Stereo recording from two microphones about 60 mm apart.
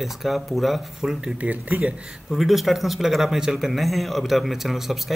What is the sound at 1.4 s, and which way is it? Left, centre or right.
Speech, right.